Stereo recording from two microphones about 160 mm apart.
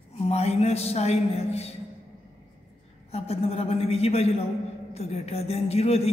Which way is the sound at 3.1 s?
40° left (ahead or behind).